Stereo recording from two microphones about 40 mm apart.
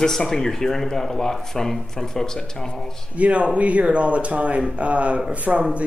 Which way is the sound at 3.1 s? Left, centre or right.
Right.